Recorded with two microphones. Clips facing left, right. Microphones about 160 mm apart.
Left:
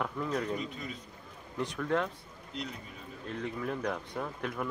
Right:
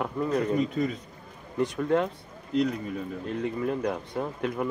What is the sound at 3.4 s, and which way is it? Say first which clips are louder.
Speech: right 6 dB; 15° right (ahead or behind).